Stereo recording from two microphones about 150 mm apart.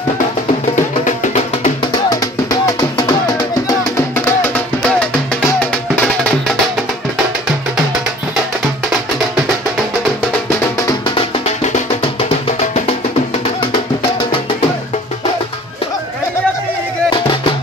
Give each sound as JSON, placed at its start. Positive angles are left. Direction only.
{"t": 0.7, "sound": "music", "side_deg": 55}
{"t": 1.8, "sound": "music", "side_deg": 25}
{"t": 11.4, "sound": "music", "side_deg": 50}
{"t": 12.7, "sound": "music", "side_deg": 40}